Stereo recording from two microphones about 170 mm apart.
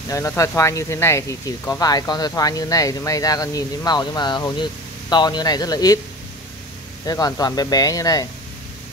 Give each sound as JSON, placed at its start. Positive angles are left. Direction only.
{"t": 0.1, "sound": "speech", "side_deg": 15}
{"t": 7.1, "sound": "speech", "side_deg": 20}